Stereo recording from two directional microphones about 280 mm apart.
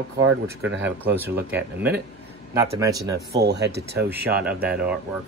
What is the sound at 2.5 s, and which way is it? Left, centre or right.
Speech, centre.